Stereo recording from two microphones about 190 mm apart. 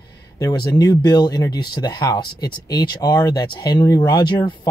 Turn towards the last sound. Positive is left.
turn(degrees=25)  # may be behind; listen again after turning